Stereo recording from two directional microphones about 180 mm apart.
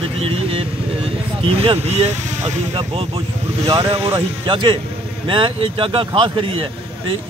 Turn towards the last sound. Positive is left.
turn(degrees=-30)  # may be behind; listen again after turning